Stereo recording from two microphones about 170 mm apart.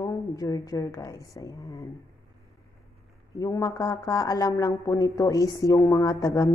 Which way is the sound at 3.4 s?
20° left (ahead or behind).